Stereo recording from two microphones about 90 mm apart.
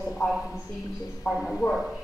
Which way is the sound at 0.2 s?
40° left (ahead or behind).